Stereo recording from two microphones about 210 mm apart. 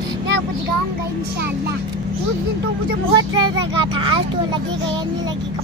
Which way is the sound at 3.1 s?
20° right (ahead or behind).